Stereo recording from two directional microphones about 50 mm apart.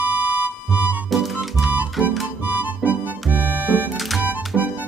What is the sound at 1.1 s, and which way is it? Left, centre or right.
Music, centre.